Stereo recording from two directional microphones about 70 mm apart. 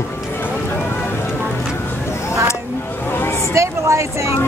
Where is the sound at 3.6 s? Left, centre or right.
Right.